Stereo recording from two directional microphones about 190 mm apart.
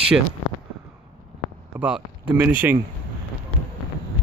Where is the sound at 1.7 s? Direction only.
5° right (ahead or behind).